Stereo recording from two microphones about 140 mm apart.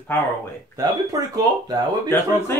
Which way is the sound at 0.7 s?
25° right (ahead or behind).